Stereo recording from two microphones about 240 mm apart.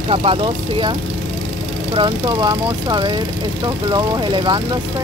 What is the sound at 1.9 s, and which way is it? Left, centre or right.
Speech, centre.